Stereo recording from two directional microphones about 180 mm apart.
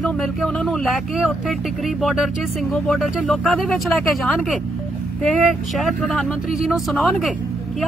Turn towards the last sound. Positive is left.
turn(degrees=0)  # may be behind; listen again after turning